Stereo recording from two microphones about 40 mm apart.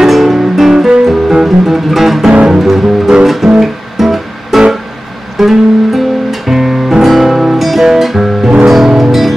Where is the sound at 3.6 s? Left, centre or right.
Centre.